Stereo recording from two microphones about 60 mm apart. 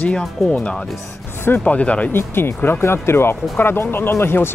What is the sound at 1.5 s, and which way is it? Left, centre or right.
Speech, left.